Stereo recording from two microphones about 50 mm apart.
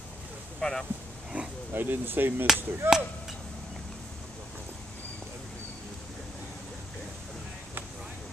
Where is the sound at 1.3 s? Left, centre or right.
Right.